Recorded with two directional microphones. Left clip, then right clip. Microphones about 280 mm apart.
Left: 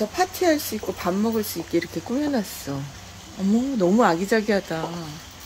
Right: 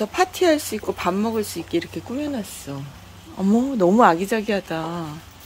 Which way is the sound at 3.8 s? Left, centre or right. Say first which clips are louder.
Right 4 dB; centre.